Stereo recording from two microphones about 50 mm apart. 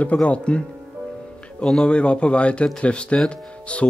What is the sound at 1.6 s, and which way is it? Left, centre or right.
Speech, centre.